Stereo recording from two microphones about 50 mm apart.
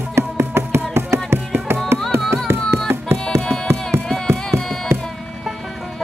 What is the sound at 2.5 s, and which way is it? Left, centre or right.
Music, right.